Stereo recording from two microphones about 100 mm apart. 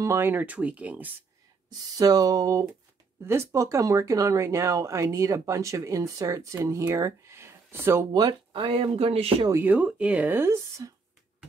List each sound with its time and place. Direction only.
0.0 s speech: 25° right (ahead or behind)
1.7 s speech: 40° right (ahead or behind)
8.1 s speech: 45° right (ahead or behind)
8.6 s speech: 75° right (ahead or behind)
9.5 s speech: 20° right (ahead or behind)